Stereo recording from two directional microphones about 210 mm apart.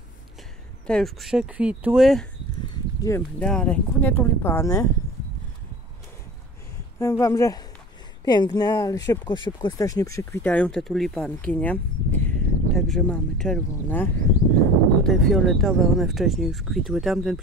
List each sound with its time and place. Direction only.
0.8 s speech: centre (ahead or behind)
2.7 s a sound: 15° left (ahead or behind)
3.2 s speech: 5° left (ahead or behind)
7.0 s speech: 15° left (ahead or behind); by 17.4 s centre (ahead or behind)